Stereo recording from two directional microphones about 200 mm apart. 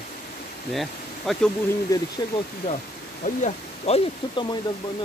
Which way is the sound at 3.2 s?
35° left (ahead or behind).